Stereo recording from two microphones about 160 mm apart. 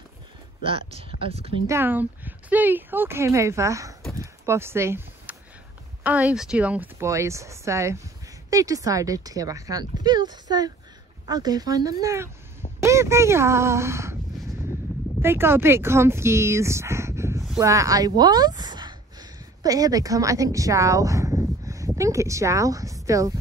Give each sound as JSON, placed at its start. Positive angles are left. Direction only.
{"t": 0.7, "sound": "speech", "side_deg": -35}
{"t": 1.7, "sound": "speech", "side_deg": -15}
{"t": 4.2, "sound": "a sound", "side_deg": -15}
{"t": 6.0, "sound": "speech", "side_deg": -10}
{"t": 15.2, "sound": "speech", "side_deg": -15}